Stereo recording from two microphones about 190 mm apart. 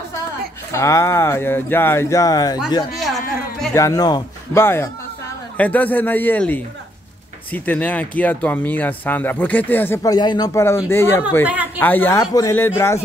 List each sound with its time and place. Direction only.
0.7 s speech: 15° left (ahead or behind)
3.7 s speech: 15° left (ahead or behind)
11.4 s speech: 10° right (ahead or behind)
11.8 s speech: 10° left (ahead or behind)